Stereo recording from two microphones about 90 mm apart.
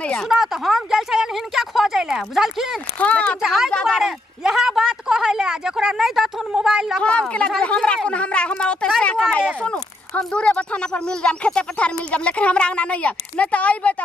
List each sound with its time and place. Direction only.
0.0 s a sound: 10° left (ahead or behind)
0.3 s speech: 5° right (ahead or behind)
3.0 s speech: 15° left (ahead or behind)
3.3 s a woman's voice: 5° right (ahead or behind)
7.0 s speech: 15° left (ahead or behind)